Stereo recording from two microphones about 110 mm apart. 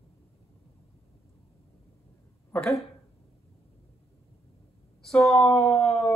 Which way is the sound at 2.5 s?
15° left (ahead or behind).